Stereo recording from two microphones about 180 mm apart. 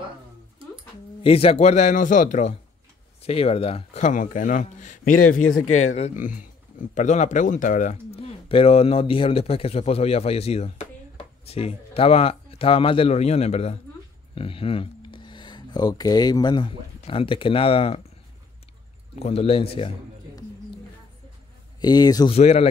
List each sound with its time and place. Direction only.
1.2 s a man's voice: 35° left (ahead or behind)
19.1 s speech: 35° left (ahead or behind)
21.7 s speech: 25° left (ahead or behind)
22.3 s speech: 35° left (ahead or behind)